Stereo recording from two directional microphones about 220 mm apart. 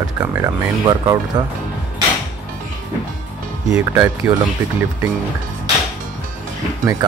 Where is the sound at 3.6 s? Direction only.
5° right (ahead or behind).